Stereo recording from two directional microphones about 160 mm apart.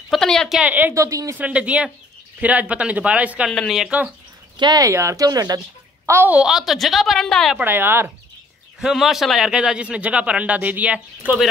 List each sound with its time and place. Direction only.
0.1 s a man's voice: 5° left (ahead or behind); by 1.4 s 20° right (ahead or behind)
1.4 s a man's voice: 10° right (ahead or behind)
4.6 s a woman's voice: 25° right (ahead or behind); by 7.6 s centre (ahead or behind)
7.6 s a man's voice: 15° right (ahead or behind)
8.8 s a man's voice: centre (ahead or behind)